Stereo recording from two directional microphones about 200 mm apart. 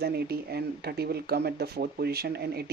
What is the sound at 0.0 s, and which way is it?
Speech, 55° right (ahead or behind).